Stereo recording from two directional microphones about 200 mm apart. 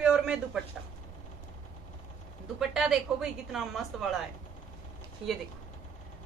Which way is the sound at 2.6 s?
5° right (ahead or behind).